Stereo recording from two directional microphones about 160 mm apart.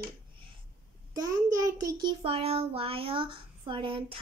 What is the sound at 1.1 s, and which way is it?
A child's voice, 20° right (ahead or behind).